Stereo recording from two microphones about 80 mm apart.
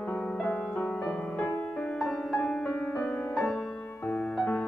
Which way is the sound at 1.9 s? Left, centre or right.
Centre.